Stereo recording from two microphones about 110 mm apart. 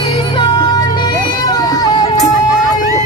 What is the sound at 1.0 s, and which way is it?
Music, 35° left (ahead or behind).